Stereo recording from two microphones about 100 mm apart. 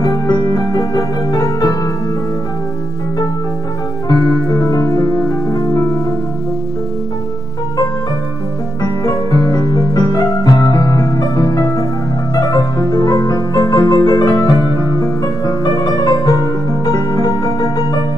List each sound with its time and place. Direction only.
0.0 s music: 35° left (ahead or behind)
4.1 s music: 40° left (ahead or behind)
8.8 s music: 35° left (ahead or behind)